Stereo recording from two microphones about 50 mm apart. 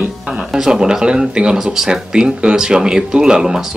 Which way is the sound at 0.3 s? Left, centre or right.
Centre.